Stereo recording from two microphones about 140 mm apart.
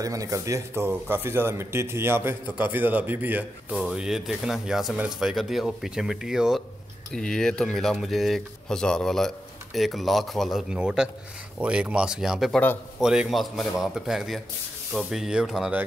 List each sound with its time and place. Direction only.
0.0 s speech: 25° right (ahead or behind); by 15.8 s 5° right (ahead or behind)